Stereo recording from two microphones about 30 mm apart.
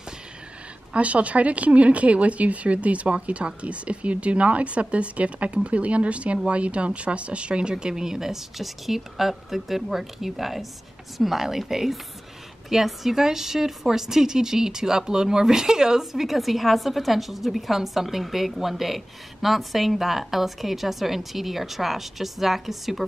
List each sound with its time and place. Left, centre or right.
0.9 s a woman's voice: right
7.7 s a woman's voice: right; by 23.0 s centre